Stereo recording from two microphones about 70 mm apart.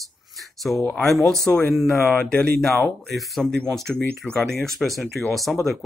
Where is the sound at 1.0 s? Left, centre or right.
Centre.